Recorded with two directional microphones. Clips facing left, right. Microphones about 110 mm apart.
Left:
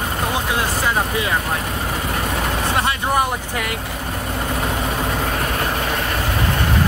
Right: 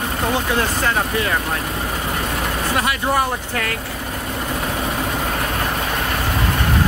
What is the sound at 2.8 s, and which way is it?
Speech, 15° left (ahead or behind).